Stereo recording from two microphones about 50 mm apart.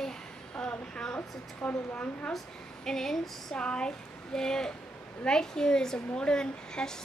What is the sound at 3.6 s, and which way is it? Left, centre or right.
Speech, centre.